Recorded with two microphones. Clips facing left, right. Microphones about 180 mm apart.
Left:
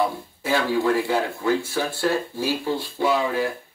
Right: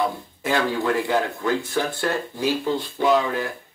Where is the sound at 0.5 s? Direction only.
20° right (ahead or behind).